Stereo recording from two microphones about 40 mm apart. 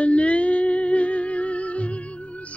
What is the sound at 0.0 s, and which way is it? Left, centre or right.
Music, left.